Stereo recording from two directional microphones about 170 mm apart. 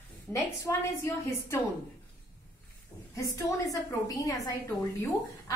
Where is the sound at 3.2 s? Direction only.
20° left (ahead or behind).